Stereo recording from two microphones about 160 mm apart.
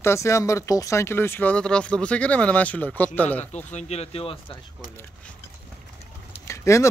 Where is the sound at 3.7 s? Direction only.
45° left (ahead or behind).